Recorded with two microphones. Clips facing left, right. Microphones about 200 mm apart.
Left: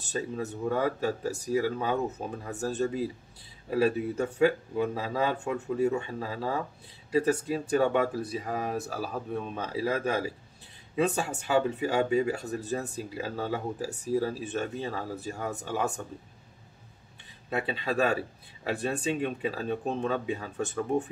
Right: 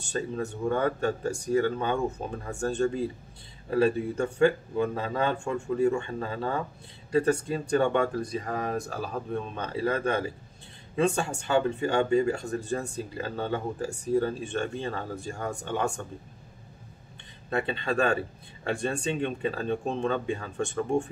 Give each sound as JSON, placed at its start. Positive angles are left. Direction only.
{"t": 0.0, "sound": "speech", "side_deg": 5}
{"t": 17.5, "sound": "speech", "side_deg": 5}